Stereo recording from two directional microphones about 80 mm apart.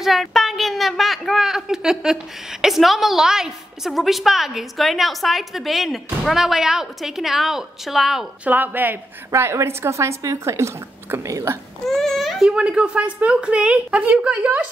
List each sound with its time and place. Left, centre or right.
0.0 s a sound: centre
2.6 s a woman's voice: centre
8.5 s a woman's voice: right
9.3 s speech: right
11.9 s speech: centre